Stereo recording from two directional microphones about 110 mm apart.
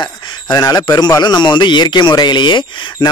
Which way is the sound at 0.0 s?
40° left (ahead or behind).